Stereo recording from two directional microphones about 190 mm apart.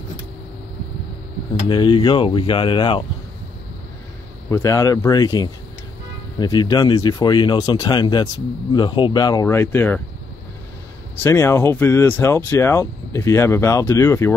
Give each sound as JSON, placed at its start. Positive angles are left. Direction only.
{"t": 1.7, "sound": "speech", "side_deg": 25}
{"t": 4.5, "sound": "speech", "side_deg": 15}
{"t": 11.2, "sound": "speech", "side_deg": 10}